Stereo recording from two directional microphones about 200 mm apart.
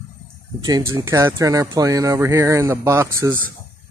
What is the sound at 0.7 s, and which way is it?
A man's voice, 20° right (ahead or behind).